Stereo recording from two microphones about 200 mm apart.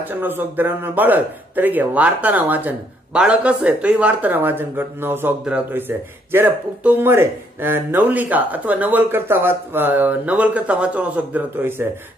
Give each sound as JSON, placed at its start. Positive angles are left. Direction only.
{"t": 0.1, "sound": "speech", "side_deg": -10}